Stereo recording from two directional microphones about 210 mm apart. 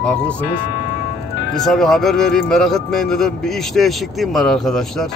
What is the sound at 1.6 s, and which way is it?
Speech, centre (ahead or behind).